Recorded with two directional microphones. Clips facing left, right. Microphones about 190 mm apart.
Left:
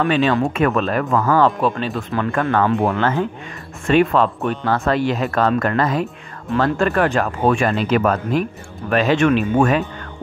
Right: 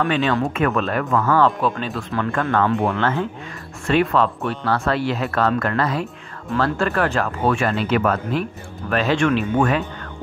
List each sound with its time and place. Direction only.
0.0 s speech: 15° left (ahead or behind)